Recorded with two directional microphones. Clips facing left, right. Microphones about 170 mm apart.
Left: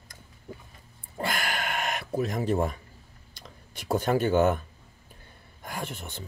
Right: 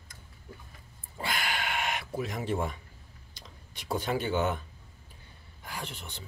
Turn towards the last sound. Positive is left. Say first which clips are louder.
# left 5 dB
turn(degrees=50)  # may be behind; listen again after turning